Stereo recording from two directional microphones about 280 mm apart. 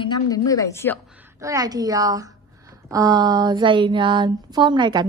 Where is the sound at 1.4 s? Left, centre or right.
Centre.